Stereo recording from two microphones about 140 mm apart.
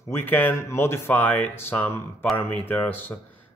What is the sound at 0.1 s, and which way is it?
A man's voice, 15° left (ahead or behind).